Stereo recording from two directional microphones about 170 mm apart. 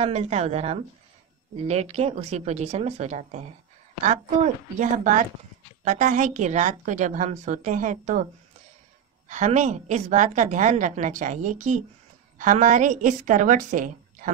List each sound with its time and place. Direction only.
0.0 s speech: 40° right (ahead or behind)
4.7 s a woman's voice: 50° right (ahead or behind)
9.3 s a woman's voice: 45° right (ahead or behind)